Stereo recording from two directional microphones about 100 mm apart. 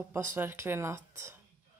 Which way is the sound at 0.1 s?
30° right (ahead or behind).